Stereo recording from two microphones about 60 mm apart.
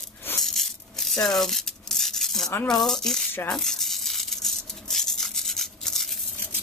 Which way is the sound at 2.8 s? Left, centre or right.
Centre.